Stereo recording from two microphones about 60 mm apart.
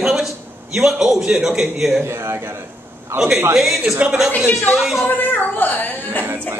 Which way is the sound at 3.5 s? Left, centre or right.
Centre.